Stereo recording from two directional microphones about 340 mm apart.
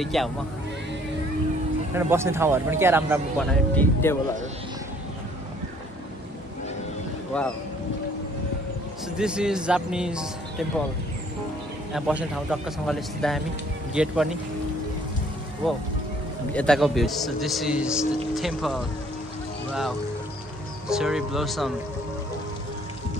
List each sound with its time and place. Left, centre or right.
0.0 s a man's voice: centre
2.0 s speech: centre
7.3 s a man's voice: centre
9.1 s a man's voice: centre
11.9 s a man's voice: centre
16.5 s a man's voice: centre
20.9 s a man's voice: centre